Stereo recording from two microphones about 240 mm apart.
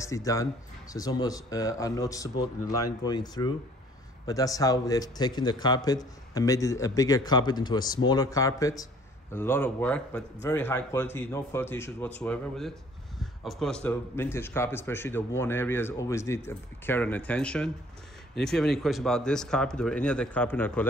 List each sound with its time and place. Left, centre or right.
0.0 s a man's voice: centre